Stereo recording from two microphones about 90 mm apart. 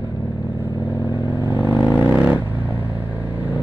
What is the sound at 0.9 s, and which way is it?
Vehicle, 20° right (ahead or behind).